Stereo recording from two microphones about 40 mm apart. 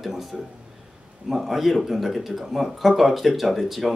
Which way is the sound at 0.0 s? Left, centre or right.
Centre.